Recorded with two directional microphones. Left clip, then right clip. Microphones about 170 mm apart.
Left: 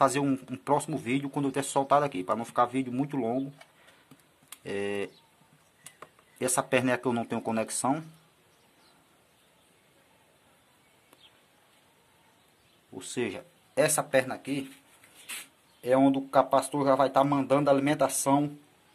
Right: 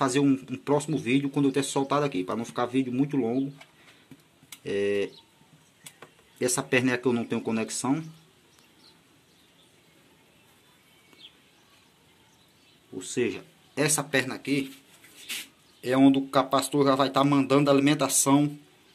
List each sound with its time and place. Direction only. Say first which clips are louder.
0.0 s speech: right 1 dB; 55° left (ahead or behind)
4.6 s speech: right 6 dB; 40° left (ahead or behind)
6.3 s speech: right 1 dB; 50° left (ahead or behind)
12.9 s speech: right 4 dB; 45° left (ahead or behind)
15.8 s speech: right 2 dB; 45° left (ahead or behind)